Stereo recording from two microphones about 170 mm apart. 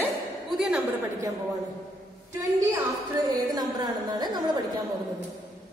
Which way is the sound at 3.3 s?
25° right (ahead or behind).